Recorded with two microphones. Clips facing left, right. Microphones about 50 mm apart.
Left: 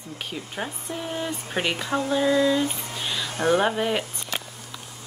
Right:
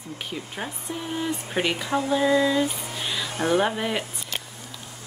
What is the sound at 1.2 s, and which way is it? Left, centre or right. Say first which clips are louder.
Speech: right 3 dB; centre.